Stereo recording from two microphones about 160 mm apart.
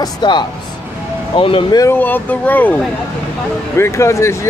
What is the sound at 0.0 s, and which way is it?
Speech, 30° left (ahead or behind).